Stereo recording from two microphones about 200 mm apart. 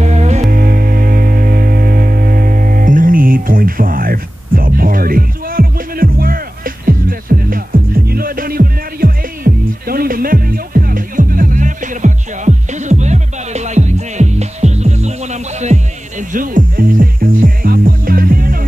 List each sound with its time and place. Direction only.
0.0 s music: 35° right (ahead or behind)